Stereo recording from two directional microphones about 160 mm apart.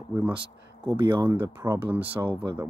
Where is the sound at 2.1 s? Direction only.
30° right (ahead or behind).